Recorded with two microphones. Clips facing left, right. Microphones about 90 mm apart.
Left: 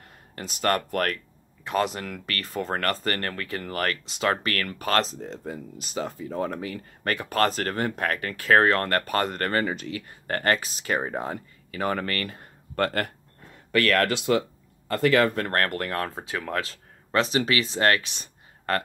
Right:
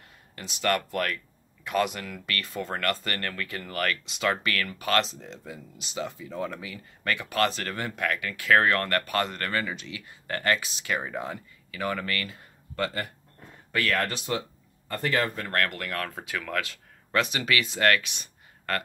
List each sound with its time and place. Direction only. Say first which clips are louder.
0.4 s speech: left 2 dB; 40° left (ahead or behind)
1.6 s speech: left 1 dB; 30° left (ahead or behind); by 13.1 s 55° left (ahead or behind)
13.7 s speech: left 5 dB; 70° left (ahead or behind)
15.5 s speech: left 3 dB; 35° left (ahead or behind)